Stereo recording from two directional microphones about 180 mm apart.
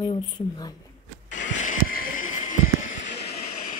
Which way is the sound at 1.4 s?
45° left (ahead or behind).